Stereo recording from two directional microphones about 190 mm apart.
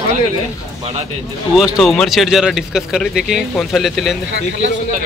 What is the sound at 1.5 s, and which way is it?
Speech, centre (ahead or behind).